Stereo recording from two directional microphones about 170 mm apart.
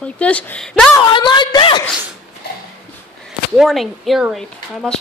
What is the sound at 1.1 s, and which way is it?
Speech, 25° left (ahead or behind).